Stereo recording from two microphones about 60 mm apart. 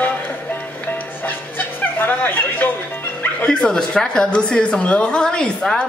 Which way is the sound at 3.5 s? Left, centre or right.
Centre.